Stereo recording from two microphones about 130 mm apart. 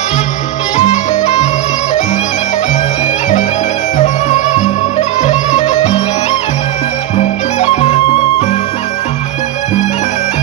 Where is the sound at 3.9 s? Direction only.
60° left (ahead or behind).